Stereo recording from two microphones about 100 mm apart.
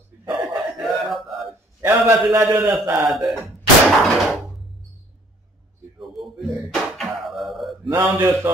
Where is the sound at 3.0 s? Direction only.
Centre (ahead or behind).